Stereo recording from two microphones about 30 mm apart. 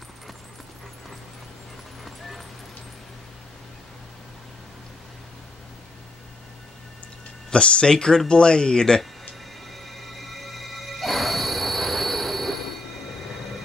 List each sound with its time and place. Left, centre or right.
2.0 s music: centre
7.5 s speech: left
9.7 s music: centre